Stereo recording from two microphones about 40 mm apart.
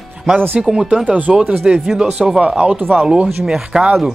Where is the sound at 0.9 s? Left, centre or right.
Right.